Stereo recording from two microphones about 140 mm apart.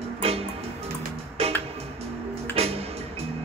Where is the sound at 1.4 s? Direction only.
45° right (ahead or behind).